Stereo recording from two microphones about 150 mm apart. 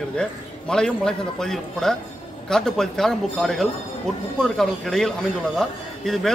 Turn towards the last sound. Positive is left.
turn(degrees=0)  # may be behind; listen again after turning